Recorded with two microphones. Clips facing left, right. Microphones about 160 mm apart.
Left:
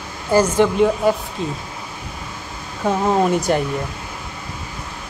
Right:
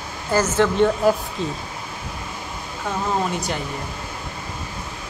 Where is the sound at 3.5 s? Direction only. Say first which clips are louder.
Left 9 dB; 50° left (ahead or behind).